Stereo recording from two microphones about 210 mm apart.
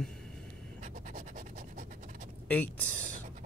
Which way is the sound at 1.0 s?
40° right (ahead or behind).